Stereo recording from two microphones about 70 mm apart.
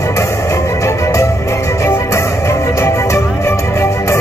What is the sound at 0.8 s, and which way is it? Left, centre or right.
Music, left.